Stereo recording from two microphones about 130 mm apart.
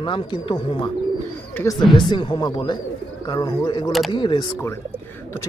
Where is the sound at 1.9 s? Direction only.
35° left (ahead or behind).